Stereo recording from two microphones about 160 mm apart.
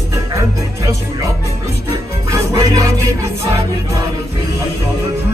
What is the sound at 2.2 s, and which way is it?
Music, 20° right (ahead or behind).